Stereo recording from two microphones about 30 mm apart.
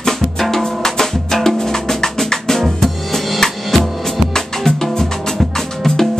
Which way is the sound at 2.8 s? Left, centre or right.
Centre.